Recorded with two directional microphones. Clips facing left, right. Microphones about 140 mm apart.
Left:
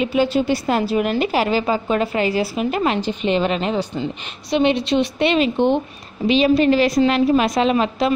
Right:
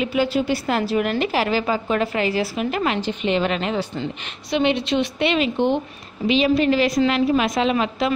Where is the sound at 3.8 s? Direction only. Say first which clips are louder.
Left 2 dB; 10° left (ahead or behind).